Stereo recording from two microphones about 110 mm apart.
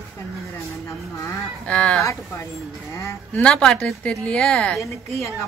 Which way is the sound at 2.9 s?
25° left (ahead or behind).